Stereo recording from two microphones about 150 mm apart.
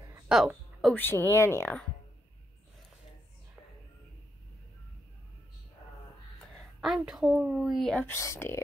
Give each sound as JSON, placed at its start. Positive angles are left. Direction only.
{"t": 0.3, "sound": "a woman's voice", "side_deg": -5}
{"t": 0.9, "sound": "speech", "side_deg": 15}
{"t": 6.8, "sound": "a woman's voice", "side_deg": 0}
{"t": 8.1, "sound": "speech", "side_deg": 15}